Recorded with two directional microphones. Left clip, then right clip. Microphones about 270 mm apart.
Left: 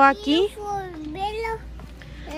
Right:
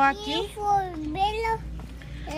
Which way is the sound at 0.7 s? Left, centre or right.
Centre.